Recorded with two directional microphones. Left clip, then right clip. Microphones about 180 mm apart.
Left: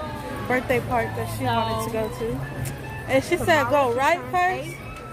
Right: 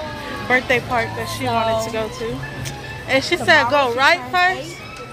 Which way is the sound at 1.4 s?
55° right (ahead or behind).